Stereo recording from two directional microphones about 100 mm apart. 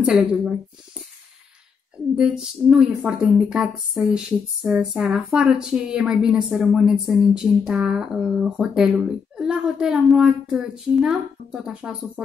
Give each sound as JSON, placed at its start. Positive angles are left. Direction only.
{"t": 0.0, "sound": "speech", "side_deg": -10}
{"t": 2.1, "sound": "speech", "side_deg": -5}